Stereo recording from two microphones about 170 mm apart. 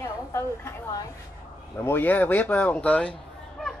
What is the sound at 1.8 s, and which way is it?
Speech, 10° left (ahead or behind).